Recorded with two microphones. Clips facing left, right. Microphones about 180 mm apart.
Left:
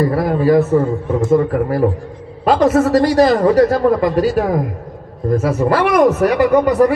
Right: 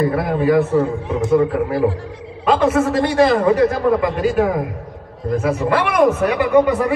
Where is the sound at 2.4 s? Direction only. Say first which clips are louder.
Left 3 dB; 35° left (ahead or behind).